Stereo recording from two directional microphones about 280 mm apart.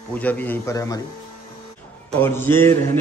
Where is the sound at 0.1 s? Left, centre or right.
Centre.